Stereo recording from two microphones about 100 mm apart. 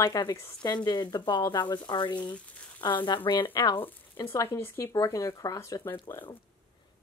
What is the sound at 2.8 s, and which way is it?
Speech, 50° left (ahead or behind).